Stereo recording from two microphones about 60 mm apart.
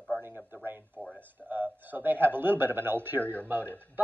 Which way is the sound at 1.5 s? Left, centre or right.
Right.